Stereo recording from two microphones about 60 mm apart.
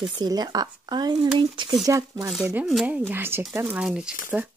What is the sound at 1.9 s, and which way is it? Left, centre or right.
Speech, right.